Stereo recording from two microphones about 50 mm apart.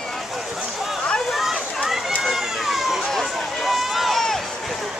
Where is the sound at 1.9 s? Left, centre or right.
Centre.